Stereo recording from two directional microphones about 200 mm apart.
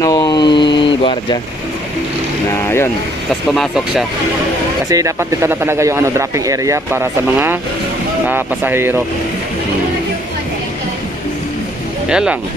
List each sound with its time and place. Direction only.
0.0 s a sound: 20° left (ahead or behind)
2.5 s speech: 10° left (ahead or behind)
3.5 s speech: centre (ahead or behind)
4.8 s speech: 15° right (ahead or behind)
12.1 s speech: 5° right (ahead or behind)